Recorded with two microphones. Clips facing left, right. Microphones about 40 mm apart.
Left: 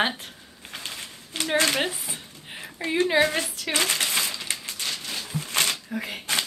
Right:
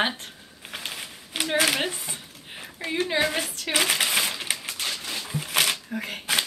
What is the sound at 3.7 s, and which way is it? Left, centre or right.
Speech, centre.